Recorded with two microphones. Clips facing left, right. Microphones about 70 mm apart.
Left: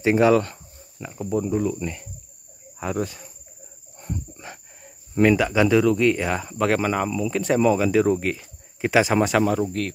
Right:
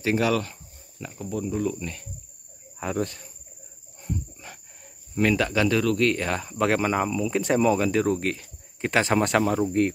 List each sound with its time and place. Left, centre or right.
0.0 s speech: left
1.0 s speech: centre
2.8 s speech: centre
5.2 s speech: centre
9.7 s speech: right